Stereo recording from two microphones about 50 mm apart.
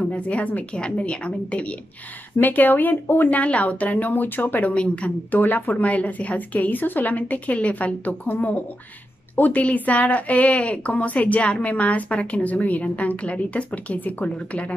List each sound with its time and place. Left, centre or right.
0.0 s speech: left
2.3 s a woman's voice: left